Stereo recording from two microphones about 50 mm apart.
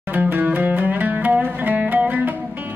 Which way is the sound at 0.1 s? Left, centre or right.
Right.